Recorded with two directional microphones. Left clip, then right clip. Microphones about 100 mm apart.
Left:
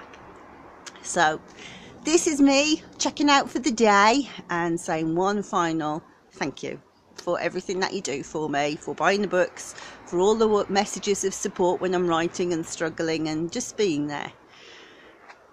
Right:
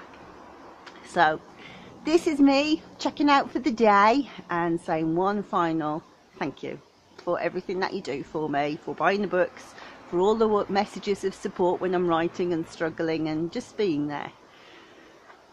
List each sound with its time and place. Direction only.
0.8 s speech: 15° left (ahead or behind)